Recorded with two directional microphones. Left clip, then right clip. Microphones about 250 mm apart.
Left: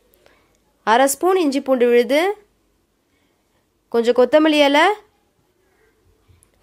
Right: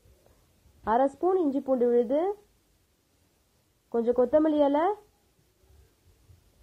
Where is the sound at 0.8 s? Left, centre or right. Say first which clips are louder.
Left 10 dB; left.